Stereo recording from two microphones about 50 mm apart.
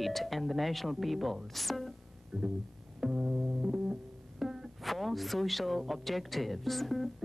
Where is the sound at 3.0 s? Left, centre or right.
Right.